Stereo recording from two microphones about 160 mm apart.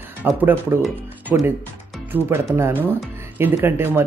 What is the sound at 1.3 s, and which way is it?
Speech, 5° right (ahead or behind).